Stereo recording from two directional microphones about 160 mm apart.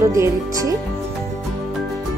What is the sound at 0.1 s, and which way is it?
Speech, 20° right (ahead or behind).